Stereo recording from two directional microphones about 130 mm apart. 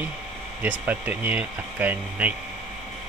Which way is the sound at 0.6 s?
15° right (ahead or behind).